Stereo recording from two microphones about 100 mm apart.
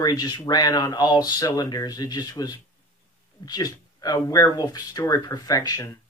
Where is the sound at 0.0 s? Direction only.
40° left (ahead or behind).